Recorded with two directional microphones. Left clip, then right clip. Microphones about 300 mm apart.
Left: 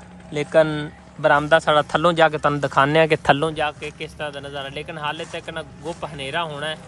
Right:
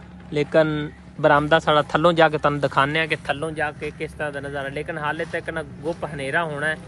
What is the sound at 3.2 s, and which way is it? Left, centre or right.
Speech, left.